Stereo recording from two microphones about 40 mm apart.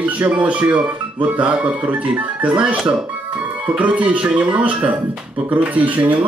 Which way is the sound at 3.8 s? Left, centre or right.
Right.